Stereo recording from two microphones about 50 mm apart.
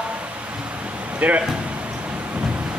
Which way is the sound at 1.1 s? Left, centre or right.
Right.